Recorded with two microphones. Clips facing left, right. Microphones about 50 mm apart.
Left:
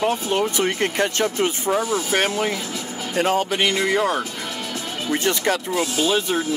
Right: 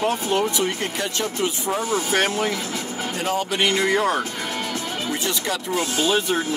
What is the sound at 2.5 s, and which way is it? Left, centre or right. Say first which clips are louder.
Speech: right 1 dB; right.